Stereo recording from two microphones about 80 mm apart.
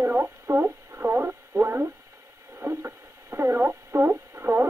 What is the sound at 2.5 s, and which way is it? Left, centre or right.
Radio, right.